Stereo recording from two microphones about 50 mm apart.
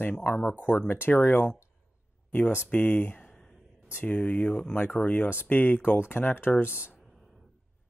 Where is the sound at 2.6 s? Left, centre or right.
Left.